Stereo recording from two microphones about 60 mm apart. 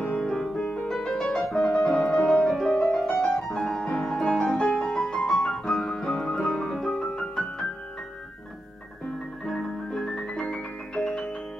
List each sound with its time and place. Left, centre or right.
0.0 s music: centre
0.3 s music: centre
4.9 s piano: centre
6.4 s music: centre
9.5 s music: centre